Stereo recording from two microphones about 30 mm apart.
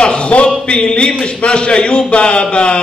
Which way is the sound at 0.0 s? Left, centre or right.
Left.